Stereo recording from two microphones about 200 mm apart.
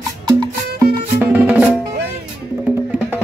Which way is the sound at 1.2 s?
5° right (ahead or behind).